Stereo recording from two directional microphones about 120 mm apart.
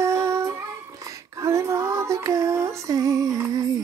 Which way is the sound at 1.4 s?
25° right (ahead or behind).